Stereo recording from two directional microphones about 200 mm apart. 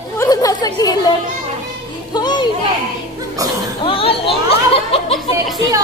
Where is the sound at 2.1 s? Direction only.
20° left (ahead or behind).